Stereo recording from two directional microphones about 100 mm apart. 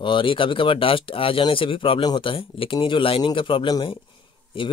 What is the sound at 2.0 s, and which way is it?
Speech, 50° left (ahead or behind).